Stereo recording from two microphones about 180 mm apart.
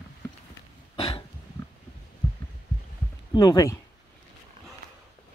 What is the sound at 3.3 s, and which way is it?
Speech, 20° left (ahead or behind).